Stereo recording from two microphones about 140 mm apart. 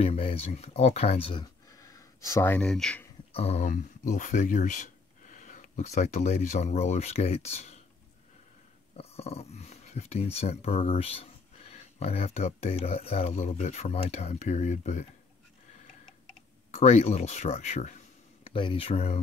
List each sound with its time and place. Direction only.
0.0 s speech: 45° left (ahead or behind); by 2.6 s 15° left (ahead or behind)
2.6 s speech: 5° left (ahead or behind)
3.3 s speech: 50° left (ahead or behind)
3.6 s speech: 65° left (ahead or behind); by 7.7 s 50° left (ahead or behind)
8.9 s speech: 45° left (ahead or behind)
16.7 s speech: 50° left (ahead or behind)
18.5 s speech: 40° left (ahead or behind)